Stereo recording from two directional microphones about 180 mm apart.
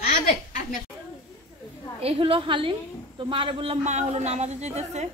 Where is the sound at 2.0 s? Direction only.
30° right (ahead or behind).